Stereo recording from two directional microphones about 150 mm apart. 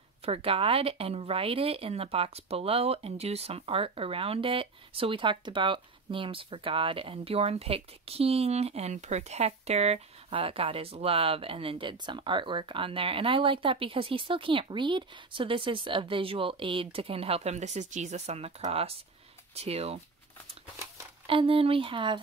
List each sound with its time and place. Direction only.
0.2 s speech: 40° right (ahead or behind)
21.3 s speech: 35° right (ahead or behind)